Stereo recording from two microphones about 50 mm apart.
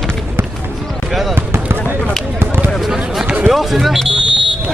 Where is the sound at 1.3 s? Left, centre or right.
Right.